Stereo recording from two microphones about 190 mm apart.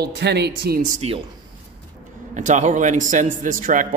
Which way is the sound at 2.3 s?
40° right (ahead or behind).